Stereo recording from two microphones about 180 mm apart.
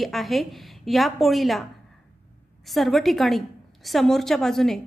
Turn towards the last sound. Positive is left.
turn(degrees=0)  # may be behind; listen again after turning